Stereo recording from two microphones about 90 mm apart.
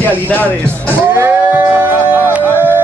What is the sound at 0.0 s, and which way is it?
Speech, 20° left (ahead or behind).